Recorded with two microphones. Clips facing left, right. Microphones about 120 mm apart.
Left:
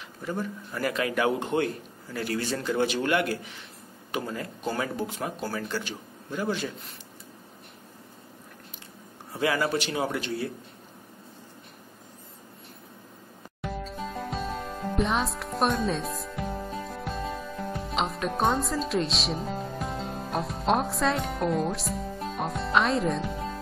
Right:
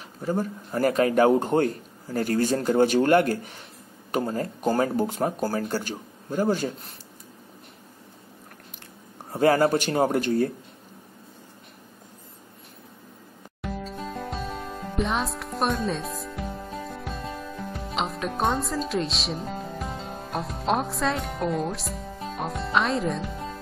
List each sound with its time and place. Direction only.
0.2 s a man's voice: 40° right (ahead or behind)
9.3 s a man's voice: 45° right (ahead or behind)
13.6 s music: centre (ahead or behind)